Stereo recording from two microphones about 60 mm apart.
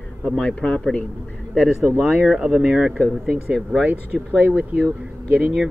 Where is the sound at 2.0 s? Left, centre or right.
Centre.